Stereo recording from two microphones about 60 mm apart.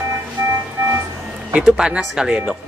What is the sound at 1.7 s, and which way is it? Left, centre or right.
Speech, centre.